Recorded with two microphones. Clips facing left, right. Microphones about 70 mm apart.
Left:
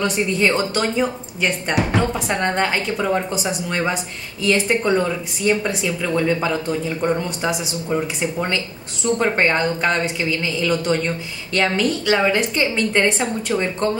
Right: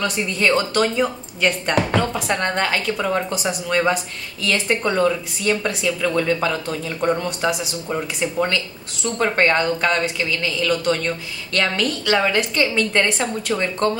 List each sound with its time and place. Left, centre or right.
0.0 s a woman's voice: centre
8.2 s a woman's voice: centre